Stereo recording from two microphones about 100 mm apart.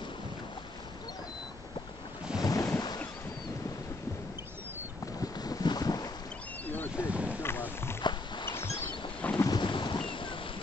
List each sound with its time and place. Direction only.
2.3 s ocean: 40° left (ahead or behind)
5.0 s boat: 40° left (ahead or behind)
7.0 s boat: 10° right (ahead or behind)
7.4 s a sound: 25° left (ahead or behind)
8.0 s a sound: 50° left (ahead or behind)
8.7 s boat: 15° left (ahead or behind)
9.6 s boat: 50° left (ahead or behind)